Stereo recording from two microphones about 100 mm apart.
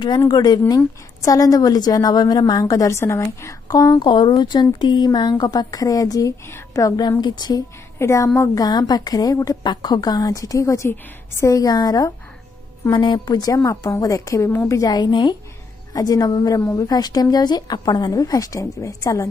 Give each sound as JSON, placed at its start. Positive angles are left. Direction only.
{"t": 0.3, "sound": "a woman's voice", "side_deg": 40}
{"t": 7.0, "sound": "a woman's voice", "side_deg": 45}
{"t": 8.0, "sound": "a woman's voice", "side_deg": 30}
{"t": 8.4, "sound": "a woman's voice", "side_deg": 40}
{"t": 12.9, "sound": "a woman's voice", "side_deg": 55}
{"t": 14.9, "sound": "speech", "side_deg": 45}
{"t": 15.9, "sound": "a woman's voice", "side_deg": 40}